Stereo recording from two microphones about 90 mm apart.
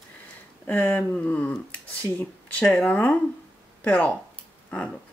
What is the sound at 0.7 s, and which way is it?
Speech, 20° left (ahead or behind).